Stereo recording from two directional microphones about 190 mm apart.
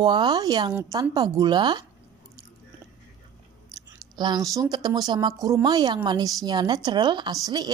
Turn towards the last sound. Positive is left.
turn(degrees=-20)  # may be behind; listen again after turning